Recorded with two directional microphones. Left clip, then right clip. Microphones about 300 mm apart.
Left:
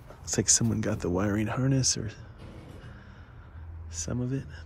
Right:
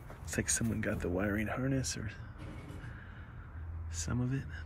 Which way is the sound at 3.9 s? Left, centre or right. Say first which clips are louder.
Left 5 dB; centre.